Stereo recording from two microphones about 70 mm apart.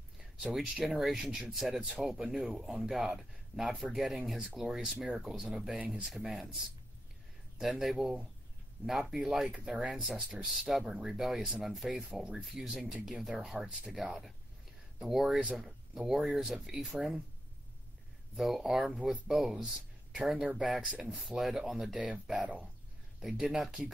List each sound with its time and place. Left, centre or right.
0.2 s speech: centre
7.5 s speech: centre
18.3 s speech: centre
21.9 s speech: centre